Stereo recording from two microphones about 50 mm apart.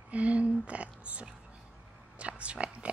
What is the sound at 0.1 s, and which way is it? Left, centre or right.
A woman's voice, right.